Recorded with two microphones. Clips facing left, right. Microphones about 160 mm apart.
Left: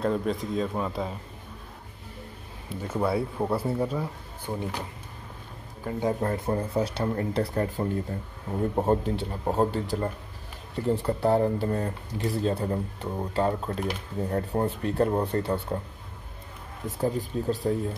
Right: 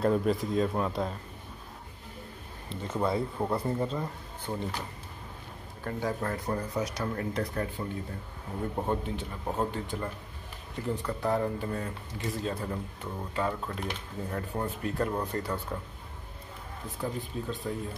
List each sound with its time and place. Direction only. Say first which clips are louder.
0.0 s speech: right 1 dB; centre (ahead or behind)
2.7 s speech: left 3 dB; 5° left (ahead or behind)
5.9 s speech: left 5 dB; 20° left (ahead or behind)
17.0 s speech: left 7 dB; 40° left (ahead or behind)